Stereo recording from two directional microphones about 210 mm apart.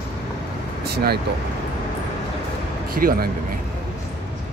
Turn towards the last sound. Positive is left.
turn(degrees=-45)  # may be behind; listen again after turning